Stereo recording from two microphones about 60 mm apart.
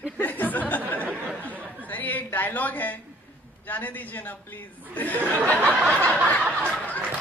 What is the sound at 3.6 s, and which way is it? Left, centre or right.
A man's voice, left.